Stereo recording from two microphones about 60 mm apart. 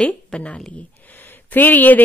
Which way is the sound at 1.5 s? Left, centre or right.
Left.